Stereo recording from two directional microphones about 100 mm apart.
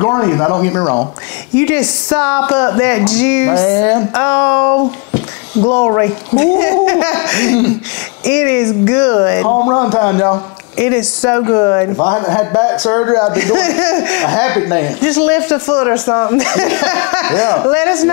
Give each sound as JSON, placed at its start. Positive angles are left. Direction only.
{"t": 0.0, "sound": "speech", "side_deg": 30}
{"t": 16.3, "sound": "speech", "side_deg": 15}